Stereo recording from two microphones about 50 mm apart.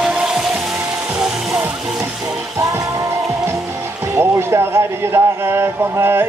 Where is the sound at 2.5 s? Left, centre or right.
Right.